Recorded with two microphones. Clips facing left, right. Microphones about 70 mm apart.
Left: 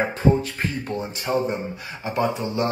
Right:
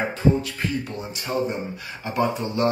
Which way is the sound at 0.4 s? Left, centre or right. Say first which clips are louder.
Even; left.